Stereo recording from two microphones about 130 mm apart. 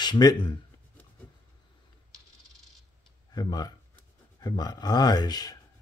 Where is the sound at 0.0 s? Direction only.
30° left (ahead or behind).